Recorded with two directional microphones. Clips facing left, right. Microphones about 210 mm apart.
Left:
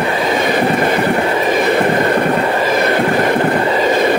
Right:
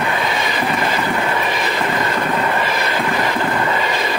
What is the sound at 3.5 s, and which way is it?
Train, 35° left (ahead or behind).